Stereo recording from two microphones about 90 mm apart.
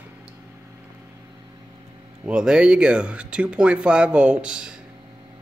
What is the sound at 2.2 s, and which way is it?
Speech, 10° right (ahead or behind).